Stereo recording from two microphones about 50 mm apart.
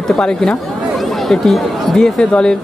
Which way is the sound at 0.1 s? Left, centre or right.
Centre.